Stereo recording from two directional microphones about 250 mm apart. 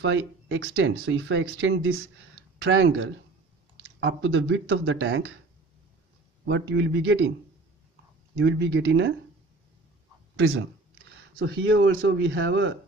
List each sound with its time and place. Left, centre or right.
0.0 s speech: right
6.4 s speech: right
8.4 s speech: right
10.5 s speech: right